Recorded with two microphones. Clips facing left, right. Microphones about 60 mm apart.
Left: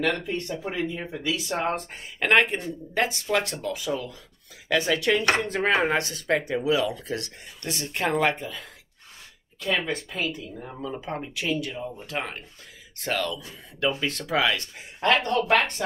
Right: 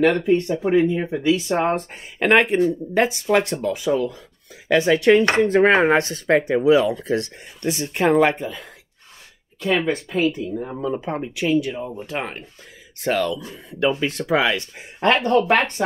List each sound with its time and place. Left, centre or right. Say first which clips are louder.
0.0 s speech: right 10 dB; right
1.9 s speech: right 5 dB; centre; by 7.3 s right
7.6 s speech: right 8 dB; centre
9.8 s speech: right 8 dB; right
11.1 s speech: right 8 dB; centre
11.7 s speech: right 4 dB; right